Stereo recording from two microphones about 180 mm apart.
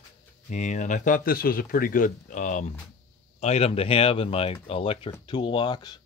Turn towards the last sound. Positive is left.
turn(degrees=25)  # may be behind; listen again after turning